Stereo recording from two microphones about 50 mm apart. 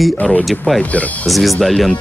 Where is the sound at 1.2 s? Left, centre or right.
Centre.